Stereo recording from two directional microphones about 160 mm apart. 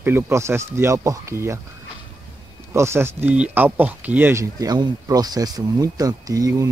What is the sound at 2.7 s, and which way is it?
Speech, 15° right (ahead or behind).